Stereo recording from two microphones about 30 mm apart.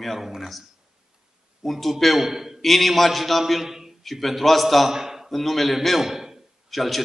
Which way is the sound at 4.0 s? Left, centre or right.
Centre.